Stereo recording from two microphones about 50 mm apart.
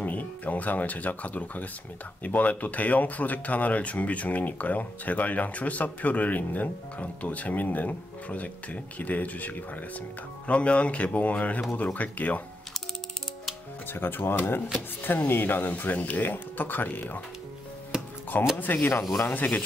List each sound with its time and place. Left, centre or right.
0.0 s speech: left
13.8 s speech: left
18.6 s speech: left